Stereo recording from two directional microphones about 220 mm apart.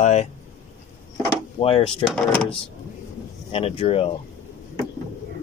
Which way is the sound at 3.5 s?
25° left (ahead or behind).